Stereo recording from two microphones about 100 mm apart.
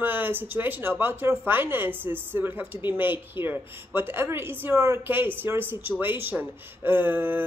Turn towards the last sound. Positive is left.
turn(degrees=-20)  # may be behind; listen again after turning